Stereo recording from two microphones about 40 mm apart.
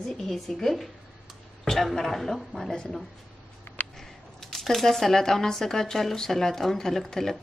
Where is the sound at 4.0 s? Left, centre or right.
Centre.